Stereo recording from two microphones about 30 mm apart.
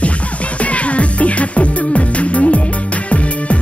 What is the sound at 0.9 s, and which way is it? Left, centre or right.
Music, left.